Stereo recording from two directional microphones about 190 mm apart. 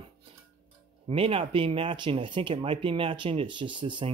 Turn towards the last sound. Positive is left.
turn(degrees=-25)  # may be behind; listen again after turning